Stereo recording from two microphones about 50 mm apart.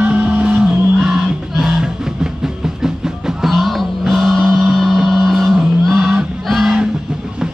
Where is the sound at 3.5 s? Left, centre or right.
Centre.